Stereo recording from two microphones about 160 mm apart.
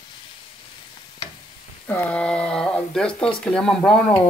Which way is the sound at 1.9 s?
10° left (ahead or behind).